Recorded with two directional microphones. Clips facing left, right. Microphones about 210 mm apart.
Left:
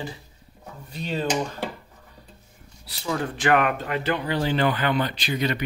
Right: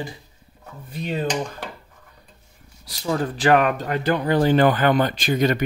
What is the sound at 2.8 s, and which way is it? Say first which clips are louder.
Speech: right 4 dB; 40° right (ahead or behind).